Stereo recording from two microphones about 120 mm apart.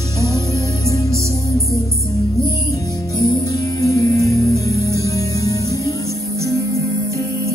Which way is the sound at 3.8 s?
25° left (ahead or behind).